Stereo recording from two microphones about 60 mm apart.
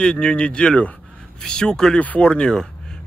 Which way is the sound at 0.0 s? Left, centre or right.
Centre.